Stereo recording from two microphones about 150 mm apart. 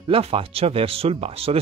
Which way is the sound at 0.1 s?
40° right (ahead or behind).